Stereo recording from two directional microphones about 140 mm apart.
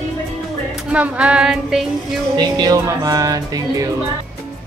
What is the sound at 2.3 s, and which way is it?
Music, 30° right (ahead or behind).